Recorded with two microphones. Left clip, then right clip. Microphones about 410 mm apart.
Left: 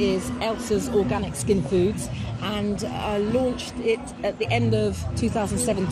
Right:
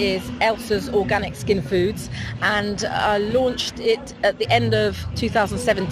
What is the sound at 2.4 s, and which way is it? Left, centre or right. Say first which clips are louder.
Speech: right 7 dB; right.